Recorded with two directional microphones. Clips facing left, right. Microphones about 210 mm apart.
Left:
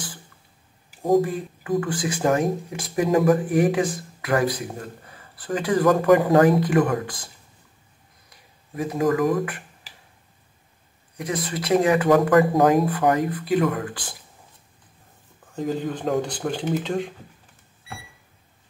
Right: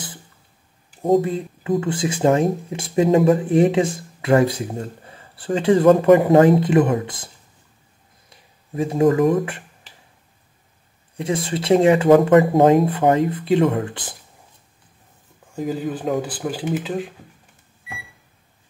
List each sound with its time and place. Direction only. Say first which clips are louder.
1.0 s speech: right 2 dB; 25° right (ahead or behind)
8.7 s speech: right 5 dB; 25° right (ahead or behind)
11.1 s speech: right 4 dB; 25° right (ahead or behind)
15.5 s speech: right 2 dB; 5° right (ahead or behind)